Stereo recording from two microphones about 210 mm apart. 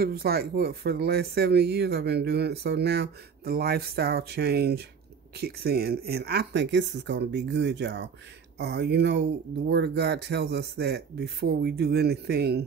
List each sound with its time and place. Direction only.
0.0 s speech: 45° right (ahead or behind)